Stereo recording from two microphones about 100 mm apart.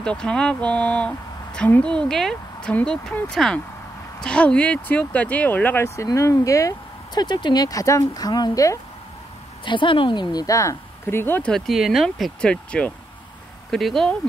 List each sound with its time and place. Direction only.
0.0 s speech: 10° left (ahead or behind)
5.9 s speech: 30° left (ahead or behind)
7.2 s speech: 50° left (ahead or behind)
9.7 s speech: 55° left (ahead or behind)
10.4 s speech: 35° left (ahead or behind)
11.5 s speech: centre (ahead or behind)
12.4 s speech: 10° left (ahead or behind)